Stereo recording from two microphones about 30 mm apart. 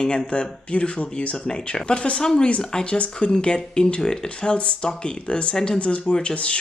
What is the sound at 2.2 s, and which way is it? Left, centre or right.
Speech, left.